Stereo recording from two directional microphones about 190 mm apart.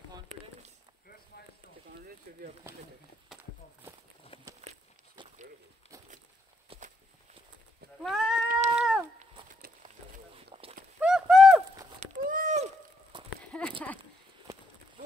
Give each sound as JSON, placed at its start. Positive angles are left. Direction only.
{"t": 2.3, "sound": "speech", "side_deg": -50}
{"t": 4.3, "sound": "a sound", "side_deg": 30}
{"t": 6.7, "sound": "walk", "side_deg": -30}
{"t": 8.0, "sound": "sheep", "side_deg": 0}
{"t": 8.5, "sound": "cat", "side_deg": -35}
{"t": 9.8, "sound": "a sound", "side_deg": -30}
{"t": 11.0, "sound": "bird", "side_deg": -5}
{"t": 12.0, "sound": "a sound", "side_deg": -45}
{"t": 13.4, "sound": "clip-clop", "side_deg": 5}